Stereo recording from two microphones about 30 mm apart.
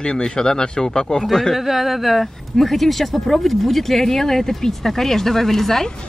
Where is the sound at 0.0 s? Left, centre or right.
Left.